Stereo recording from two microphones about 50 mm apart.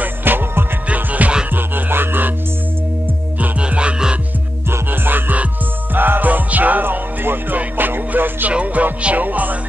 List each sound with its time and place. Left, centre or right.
0.0 s music: right
0.8 s music: right
1.5 s music: right
3.6 s music: right
4.6 s music: right